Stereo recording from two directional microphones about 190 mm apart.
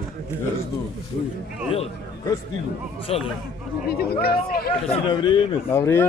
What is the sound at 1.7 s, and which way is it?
A man's voice, 30° left (ahead or behind).